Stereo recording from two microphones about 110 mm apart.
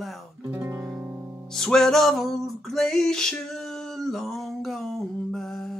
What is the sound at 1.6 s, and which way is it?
Music, 5° left (ahead or behind).